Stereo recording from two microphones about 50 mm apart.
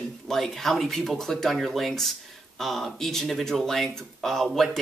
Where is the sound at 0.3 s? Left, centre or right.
Centre.